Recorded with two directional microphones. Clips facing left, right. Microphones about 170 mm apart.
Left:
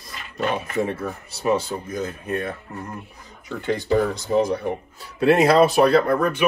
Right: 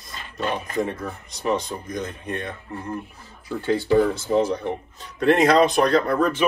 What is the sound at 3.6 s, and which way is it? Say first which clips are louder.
Speech: right 2 dB; 15° left (ahead or behind).